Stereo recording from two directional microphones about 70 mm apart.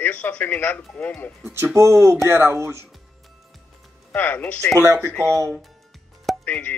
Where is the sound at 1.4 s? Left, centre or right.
Right.